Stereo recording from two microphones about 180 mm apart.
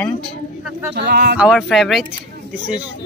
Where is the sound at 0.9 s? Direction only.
65° right (ahead or behind).